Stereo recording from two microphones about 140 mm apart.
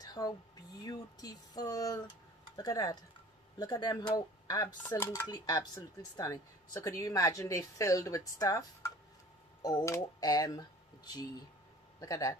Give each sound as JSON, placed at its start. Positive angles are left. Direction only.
{"t": 0.0, "sound": "speech", "side_deg": 25}